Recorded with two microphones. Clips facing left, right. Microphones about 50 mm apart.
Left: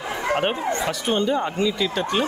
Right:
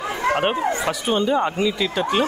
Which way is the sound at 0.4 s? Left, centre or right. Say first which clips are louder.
Right 2 dB; centre.